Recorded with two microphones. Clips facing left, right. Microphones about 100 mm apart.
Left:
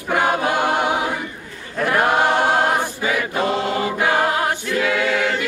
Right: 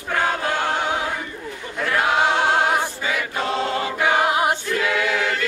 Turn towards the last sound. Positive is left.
turn(degrees=5)  # may be behind; listen again after turning